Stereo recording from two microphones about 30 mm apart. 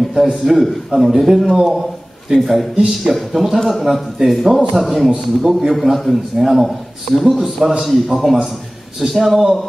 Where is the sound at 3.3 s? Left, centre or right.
Centre.